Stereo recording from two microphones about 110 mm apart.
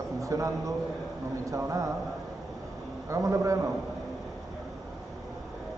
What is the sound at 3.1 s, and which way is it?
Speech, 30° right (ahead or behind).